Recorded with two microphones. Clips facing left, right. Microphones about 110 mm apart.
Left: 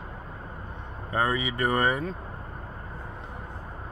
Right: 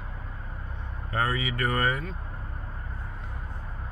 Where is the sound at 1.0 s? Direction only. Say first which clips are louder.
Left 2 dB; 20° left (ahead or behind).